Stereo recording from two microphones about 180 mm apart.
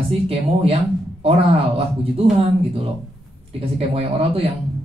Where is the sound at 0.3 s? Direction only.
30° right (ahead or behind).